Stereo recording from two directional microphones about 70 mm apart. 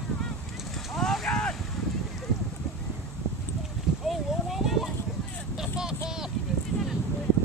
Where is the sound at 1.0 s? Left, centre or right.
Centre.